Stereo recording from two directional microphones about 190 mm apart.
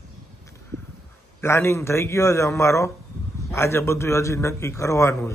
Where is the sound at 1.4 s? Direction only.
15° left (ahead or behind).